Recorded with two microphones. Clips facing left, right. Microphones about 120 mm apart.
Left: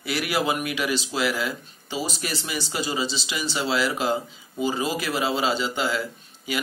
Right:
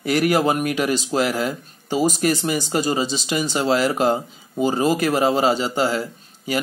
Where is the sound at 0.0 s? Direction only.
45° right (ahead or behind).